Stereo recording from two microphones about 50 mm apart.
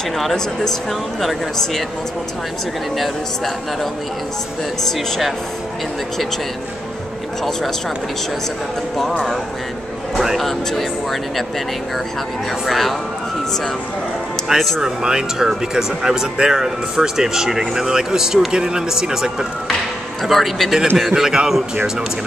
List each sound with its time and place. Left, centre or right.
0.2 s speech: centre
3.0 s speech: centre
10.1 s speech: centre
12.6 s speech: centre
14.5 s speech: centre
20.2 s speech: centre
21.1 s speech: centre